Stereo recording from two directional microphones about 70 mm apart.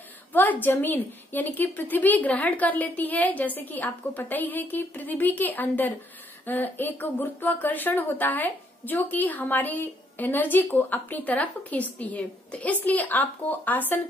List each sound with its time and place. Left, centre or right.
0.3 s speech: left